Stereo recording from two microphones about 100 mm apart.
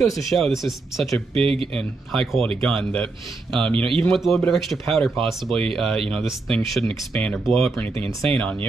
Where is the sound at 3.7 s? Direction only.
65° right (ahead or behind).